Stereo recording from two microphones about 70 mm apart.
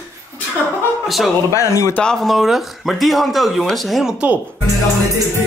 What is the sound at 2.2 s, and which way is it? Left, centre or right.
Speech, centre.